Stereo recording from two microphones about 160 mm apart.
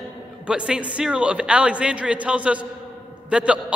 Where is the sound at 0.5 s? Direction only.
5° right (ahead or behind).